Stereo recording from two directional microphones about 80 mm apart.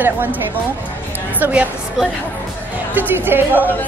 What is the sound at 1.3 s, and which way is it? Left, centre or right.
Speech, right.